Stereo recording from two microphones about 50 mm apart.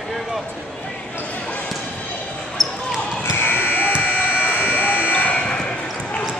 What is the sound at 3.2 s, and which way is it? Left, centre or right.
Fire alarm, left.